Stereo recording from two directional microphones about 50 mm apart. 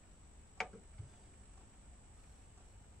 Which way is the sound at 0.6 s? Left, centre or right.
Centre.